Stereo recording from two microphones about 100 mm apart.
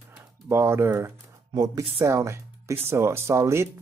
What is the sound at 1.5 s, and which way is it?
Speech, 40° right (ahead or behind).